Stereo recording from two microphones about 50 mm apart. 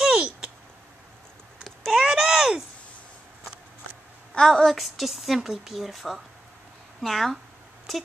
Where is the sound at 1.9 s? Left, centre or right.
Centre.